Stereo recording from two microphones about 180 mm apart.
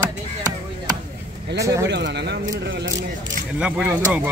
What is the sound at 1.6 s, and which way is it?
Speech, 15° right (ahead or behind).